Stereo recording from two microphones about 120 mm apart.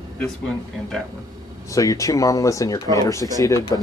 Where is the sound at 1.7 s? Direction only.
30° left (ahead or behind).